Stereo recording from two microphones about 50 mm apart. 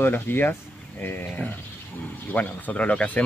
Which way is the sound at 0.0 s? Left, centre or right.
Left.